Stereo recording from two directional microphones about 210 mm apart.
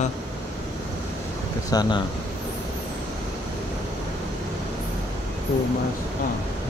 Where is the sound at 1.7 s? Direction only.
20° left (ahead or behind).